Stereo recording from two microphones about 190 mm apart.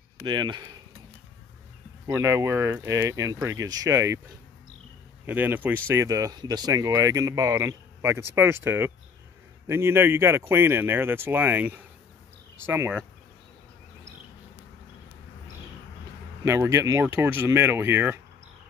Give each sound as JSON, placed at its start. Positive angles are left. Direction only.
{"t": 0.2, "sound": "speech", "side_deg": -25}
{"t": 2.0, "sound": "speech", "side_deg": -15}
{"t": 5.2, "sound": "speech", "side_deg": -10}
{"t": 16.4, "sound": "speech", "side_deg": -15}